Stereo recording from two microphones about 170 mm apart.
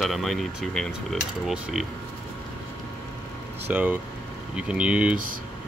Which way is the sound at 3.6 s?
10° right (ahead or behind).